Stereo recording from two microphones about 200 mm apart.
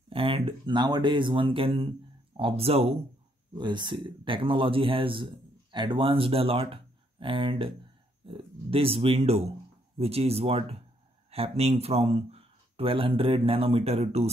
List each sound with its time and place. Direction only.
0.1 s speech: 25° right (ahead or behind)